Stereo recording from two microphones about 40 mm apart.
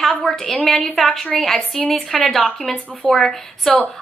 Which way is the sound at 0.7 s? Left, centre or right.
Centre.